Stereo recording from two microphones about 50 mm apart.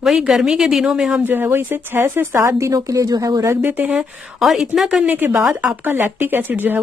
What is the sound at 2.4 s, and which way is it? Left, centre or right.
A woman's voice, right.